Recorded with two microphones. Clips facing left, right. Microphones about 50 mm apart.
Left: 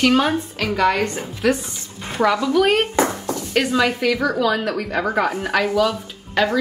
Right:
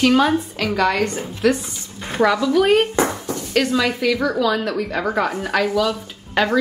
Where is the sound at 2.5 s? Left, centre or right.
Centre.